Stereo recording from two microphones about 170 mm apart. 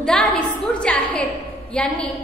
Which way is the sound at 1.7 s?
5° left (ahead or behind).